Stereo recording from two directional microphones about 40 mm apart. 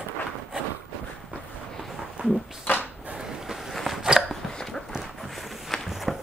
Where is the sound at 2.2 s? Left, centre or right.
Right.